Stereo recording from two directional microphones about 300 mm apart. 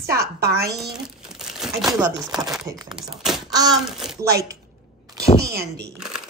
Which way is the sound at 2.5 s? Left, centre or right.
Centre.